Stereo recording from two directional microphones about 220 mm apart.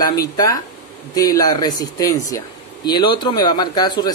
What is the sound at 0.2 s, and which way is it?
Speech, 15° left (ahead or behind).